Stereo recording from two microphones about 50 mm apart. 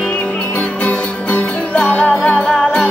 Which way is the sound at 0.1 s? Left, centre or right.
Left.